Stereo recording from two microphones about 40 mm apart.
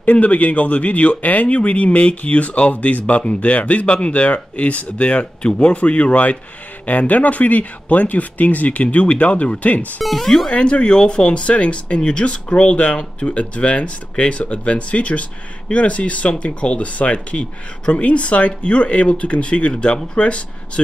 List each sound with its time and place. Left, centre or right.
0.0 s speech: left
10.0 s speech: centre
10.5 s speech: left